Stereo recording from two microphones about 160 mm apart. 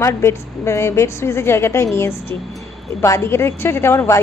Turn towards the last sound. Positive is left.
turn(degrees=15)  # may be behind; listen again after turning